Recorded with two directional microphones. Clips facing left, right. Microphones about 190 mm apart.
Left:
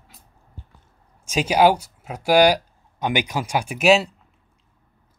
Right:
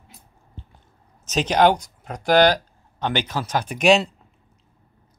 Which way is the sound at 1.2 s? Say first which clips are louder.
Left 1 dB; 10° left (ahead or behind).